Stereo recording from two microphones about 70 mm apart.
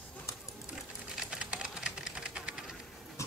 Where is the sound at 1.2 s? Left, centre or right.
Centre.